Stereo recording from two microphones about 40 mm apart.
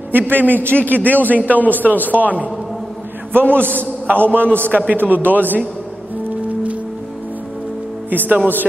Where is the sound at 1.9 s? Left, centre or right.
Left.